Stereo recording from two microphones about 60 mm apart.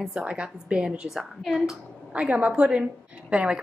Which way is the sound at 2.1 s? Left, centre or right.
Centre.